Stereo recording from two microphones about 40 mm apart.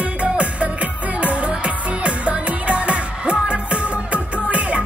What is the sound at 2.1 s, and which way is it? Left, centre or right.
Music, right.